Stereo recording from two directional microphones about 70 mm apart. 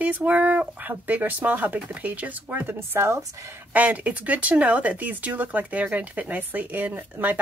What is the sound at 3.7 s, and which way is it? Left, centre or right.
A woman's voice, right.